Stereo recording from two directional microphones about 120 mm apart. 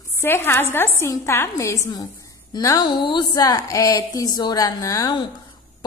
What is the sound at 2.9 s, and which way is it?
Speech, 45° left (ahead or behind).